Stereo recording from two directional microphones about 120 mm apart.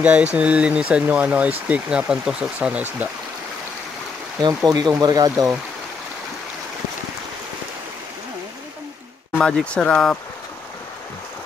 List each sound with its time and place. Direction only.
0.0 s speech: 10° right (ahead or behind)
4.6 s speech: 35° right (ahead or behind)
9.4 s speech: 5° left (ahead or behind)